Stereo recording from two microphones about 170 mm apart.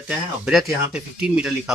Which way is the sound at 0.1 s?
Centre (ahead or behind).